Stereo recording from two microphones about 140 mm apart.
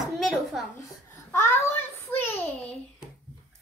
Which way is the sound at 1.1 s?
20° left (ahead or behind).